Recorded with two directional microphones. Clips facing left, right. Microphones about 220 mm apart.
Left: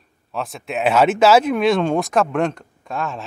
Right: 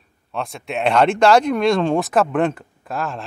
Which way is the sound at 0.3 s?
Centre (ahead or behind).